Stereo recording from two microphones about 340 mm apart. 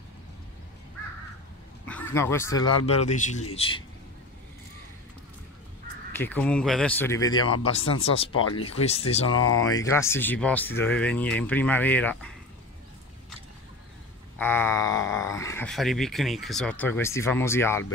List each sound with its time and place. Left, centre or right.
1.9 s speech: centre
6.1 s speech: centre
9.3 s speech: left
9.7 s speech: centre
14.4 s speech: centre